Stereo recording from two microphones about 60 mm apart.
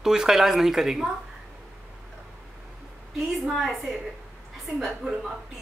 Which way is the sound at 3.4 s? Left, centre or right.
Centre.